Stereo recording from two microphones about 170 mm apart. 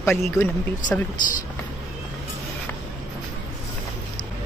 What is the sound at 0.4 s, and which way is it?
Speech, 10° left (ahead or behind).